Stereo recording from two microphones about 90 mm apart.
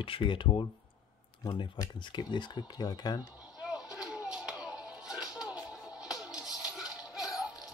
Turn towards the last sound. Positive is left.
turn(degrees=-10)  # may be behind; listen again after turning